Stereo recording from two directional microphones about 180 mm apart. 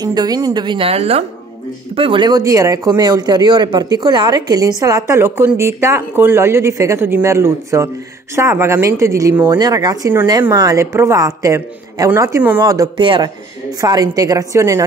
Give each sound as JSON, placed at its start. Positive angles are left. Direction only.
{"t": 0.0, "sound": "a woman's voice", "side_deg": -20}